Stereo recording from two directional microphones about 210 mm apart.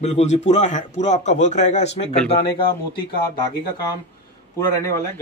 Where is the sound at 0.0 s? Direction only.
30° left (ahead or behind).